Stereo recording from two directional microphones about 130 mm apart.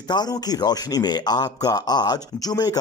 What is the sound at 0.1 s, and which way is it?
Speech, 30° left (ahead or behind).